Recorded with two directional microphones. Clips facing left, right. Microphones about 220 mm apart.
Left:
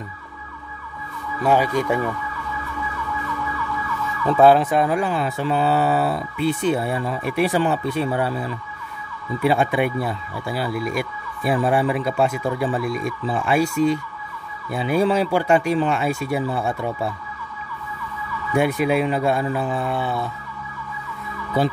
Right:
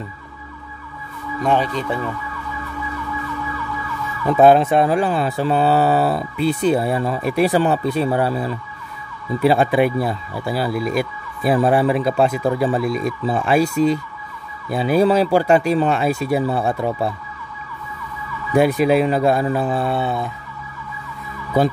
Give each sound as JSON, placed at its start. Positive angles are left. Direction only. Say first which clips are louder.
{"t": 1.4, "sound": "speech", "louder": "left 1 dB", "side_deg": 10}
{"t": 4.2, "sound": "emergency vehicle", "louder": "right 2 dB", "side_deg": -15}
{"t": 18.5, "sound": "emergency vehicle", "louder": "right 4 dB", "side_deg": -35}